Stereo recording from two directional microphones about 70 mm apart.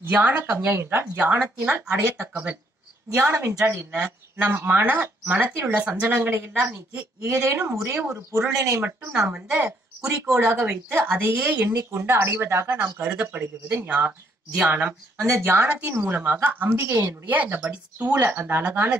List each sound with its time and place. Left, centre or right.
0.0 s speech: right
7.9 s speech: right
9.1 s speech: centre
10.4 s speech: right
10.7 s speech: right
11.6 s speech: right
13.0 s speech: right
15.1 s speech: right
15.4 s speech: right